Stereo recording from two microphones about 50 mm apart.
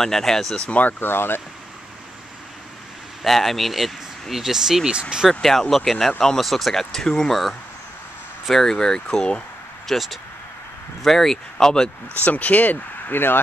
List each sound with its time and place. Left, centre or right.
0.0 s speech: centre
0.7 s speech: left
0.9 s speech: left
3.2 s speech: centre
5.4 s speech: centre
9.8 s speech: centre
12.3 s speech: left
13.1 s speech: left